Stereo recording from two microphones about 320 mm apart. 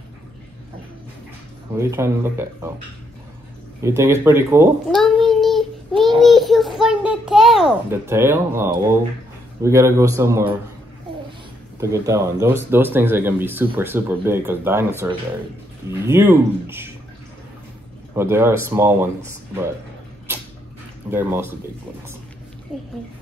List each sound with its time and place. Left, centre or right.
1.8 s speech: centre
3.8 s a child's voice: centre
11.8 s speech: centre
18.1 s speech: centre
21.1 s speech: centre